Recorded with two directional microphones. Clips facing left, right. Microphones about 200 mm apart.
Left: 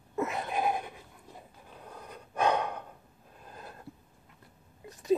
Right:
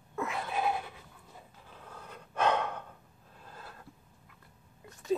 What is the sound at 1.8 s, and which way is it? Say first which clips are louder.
Breathing: left 2 dB; 15° left (ahead or behind).